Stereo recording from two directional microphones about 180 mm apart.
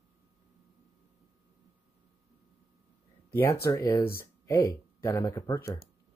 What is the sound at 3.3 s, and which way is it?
Speech, 15° left (ahead or behind).